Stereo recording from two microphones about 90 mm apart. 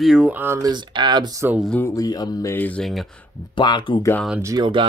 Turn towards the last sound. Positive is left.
turn(degrees=-60)  # may be behind; listen again after turning